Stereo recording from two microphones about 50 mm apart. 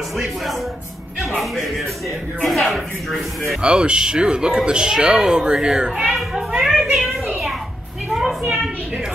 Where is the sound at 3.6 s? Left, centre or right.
Centre.